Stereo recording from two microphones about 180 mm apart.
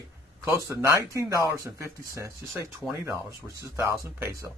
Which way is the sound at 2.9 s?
15° right (ahead or behind).